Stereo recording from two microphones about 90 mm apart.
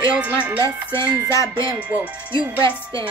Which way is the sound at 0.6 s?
35° left (ahead or behind).